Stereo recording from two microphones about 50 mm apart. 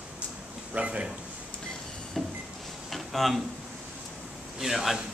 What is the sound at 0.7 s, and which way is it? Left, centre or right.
Speech, right.